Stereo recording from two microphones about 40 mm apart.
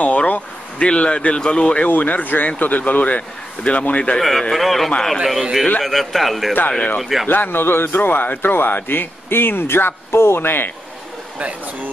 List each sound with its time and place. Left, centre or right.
0.0 s speech: left
1.9 s a man's voice: left
4.2 s a man's voice: centre
5.2 s a man's voice: centre
5.9 s a man's voice: centre
7.2 s speech: left